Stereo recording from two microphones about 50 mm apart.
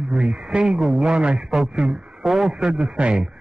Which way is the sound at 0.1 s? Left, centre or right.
Centre.